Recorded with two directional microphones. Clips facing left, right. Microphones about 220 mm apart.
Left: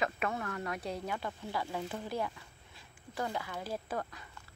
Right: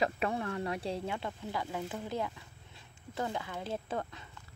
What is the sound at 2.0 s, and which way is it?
Speech, 20° right (ahead or behind).